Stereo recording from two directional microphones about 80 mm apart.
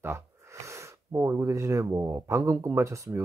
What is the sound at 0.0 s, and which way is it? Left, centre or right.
Speech, right.